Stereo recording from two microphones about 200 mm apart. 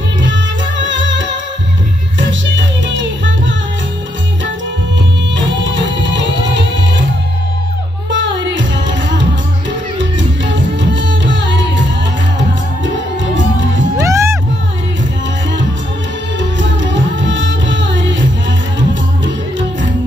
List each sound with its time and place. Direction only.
0.2 s music: 65° right (ahead or behind)
5.3 s music: 65° right (ahead or behind)
8.1 s music: 65° right (ahead or behind)
14.0 s music: 15° right (ahead or behind)
16.3 s music: 65° right (ahead or behind)